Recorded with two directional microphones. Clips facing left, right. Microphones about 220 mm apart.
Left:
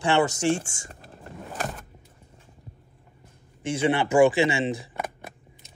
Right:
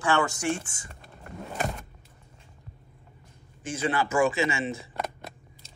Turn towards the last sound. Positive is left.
turn(degrees=30)  # may be behind; listen again after turning